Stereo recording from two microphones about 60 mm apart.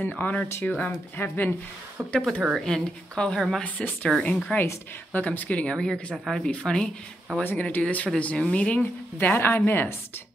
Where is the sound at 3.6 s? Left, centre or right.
Left.